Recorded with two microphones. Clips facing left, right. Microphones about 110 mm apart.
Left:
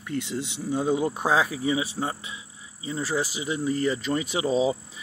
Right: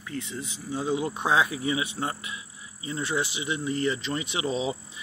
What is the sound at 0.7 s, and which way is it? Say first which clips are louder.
Speech: left 3 dB; 45° left (ahead or behind).